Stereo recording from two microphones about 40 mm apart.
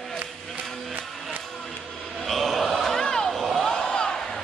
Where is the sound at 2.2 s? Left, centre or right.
Centre.